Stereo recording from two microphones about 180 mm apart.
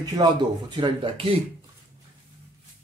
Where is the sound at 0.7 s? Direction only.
25° right (ahead or behind).